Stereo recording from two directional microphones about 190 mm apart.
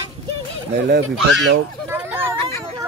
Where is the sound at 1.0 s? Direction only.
70° right (ahead or behind).